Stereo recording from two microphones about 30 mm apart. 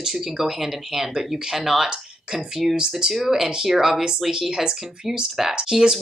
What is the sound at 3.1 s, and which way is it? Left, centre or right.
Speech, centre.